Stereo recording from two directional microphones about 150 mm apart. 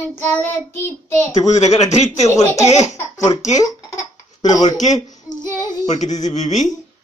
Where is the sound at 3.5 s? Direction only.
25° left (ahead or behind).